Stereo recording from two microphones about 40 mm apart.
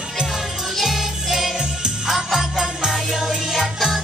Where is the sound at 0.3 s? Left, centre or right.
Centre.